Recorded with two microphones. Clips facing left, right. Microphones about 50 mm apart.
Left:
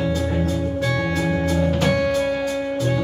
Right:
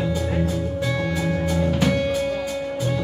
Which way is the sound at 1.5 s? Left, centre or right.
Centre.